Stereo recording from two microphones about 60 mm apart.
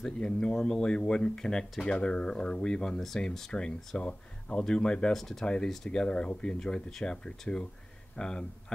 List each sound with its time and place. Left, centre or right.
0.0 s speech: centre